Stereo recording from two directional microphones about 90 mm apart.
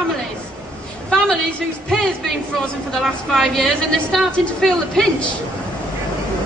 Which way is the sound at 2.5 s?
5° left (ahead or behind).